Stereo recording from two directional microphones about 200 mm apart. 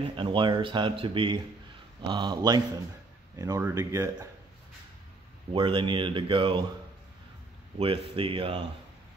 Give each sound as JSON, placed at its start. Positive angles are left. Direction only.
{"t": 0.1, "sound": "speech", "side_deg": -25}
{"t": 5.5, "sound": "speech", "side_deg": -25}
{"t": 7.8, "sound": "speech", "side_deg": -25}